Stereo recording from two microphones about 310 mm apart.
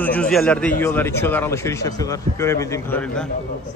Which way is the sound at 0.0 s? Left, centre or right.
Centre.